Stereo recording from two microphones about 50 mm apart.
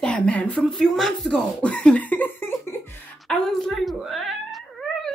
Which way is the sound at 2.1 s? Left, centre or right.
Left.